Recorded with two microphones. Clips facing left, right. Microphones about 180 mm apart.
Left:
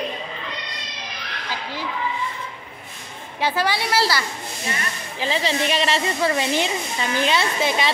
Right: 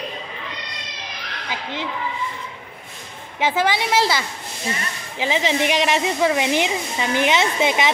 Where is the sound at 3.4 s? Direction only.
20° right (ahead or behind).